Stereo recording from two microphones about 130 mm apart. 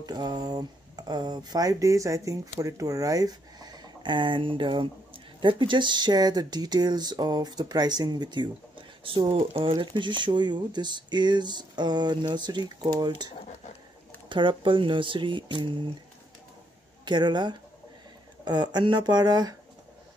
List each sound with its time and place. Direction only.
0.0 s speech: 30° right (ahead or behind)
14.3 s speech: 40° right (ahead or behind)
17.0 s speech: 35° right (ahead or behind)